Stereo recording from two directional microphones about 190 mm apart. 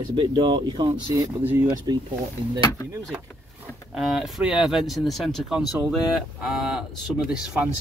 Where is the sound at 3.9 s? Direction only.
5° right (ahead or behind).